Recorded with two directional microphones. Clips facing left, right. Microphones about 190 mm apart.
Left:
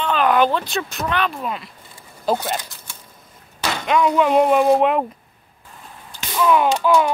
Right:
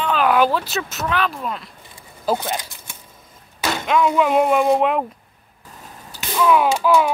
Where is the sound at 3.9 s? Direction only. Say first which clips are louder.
Left 1 dB; 5° right (ahead or behind).